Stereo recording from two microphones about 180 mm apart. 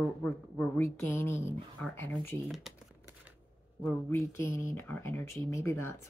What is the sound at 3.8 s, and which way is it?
Speech, 15° left (ahead or behind).